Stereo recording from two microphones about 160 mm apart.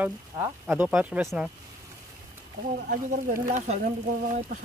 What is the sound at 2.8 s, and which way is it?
Speech, 60° right (ahead or behind).